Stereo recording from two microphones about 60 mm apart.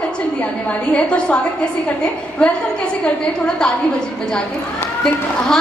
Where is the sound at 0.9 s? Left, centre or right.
Left.